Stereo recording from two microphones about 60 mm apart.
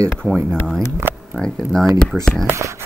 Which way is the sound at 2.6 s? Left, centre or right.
Right.